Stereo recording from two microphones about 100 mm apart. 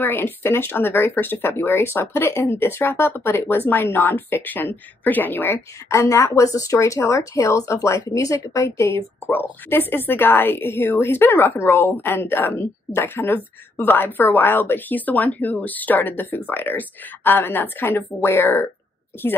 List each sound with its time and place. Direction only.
0.0 s a woman's voice: 20° left (ahead or behind)